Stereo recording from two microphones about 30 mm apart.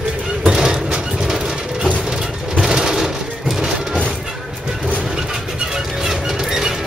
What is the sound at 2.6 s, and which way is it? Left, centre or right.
Sewing machine, centre.